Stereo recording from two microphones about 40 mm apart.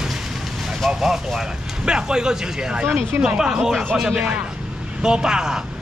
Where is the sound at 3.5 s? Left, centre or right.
Centre.